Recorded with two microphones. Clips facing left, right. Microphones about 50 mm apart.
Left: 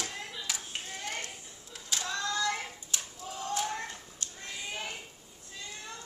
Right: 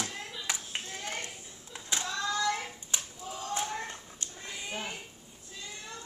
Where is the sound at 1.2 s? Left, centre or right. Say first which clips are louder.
Right 1 dB; right.